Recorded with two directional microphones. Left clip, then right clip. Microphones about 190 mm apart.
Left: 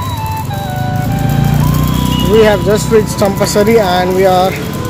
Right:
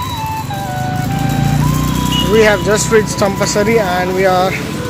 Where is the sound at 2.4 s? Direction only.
5° left (ahead or behind).